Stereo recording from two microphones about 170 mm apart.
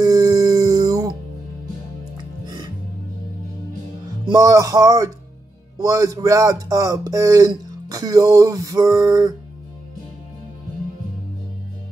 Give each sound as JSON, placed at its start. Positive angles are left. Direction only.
{"t": 0.0, "sound": "music", "side_deg": -20}
{"t": 4.3, "sound": "speech", "side_deg": -20}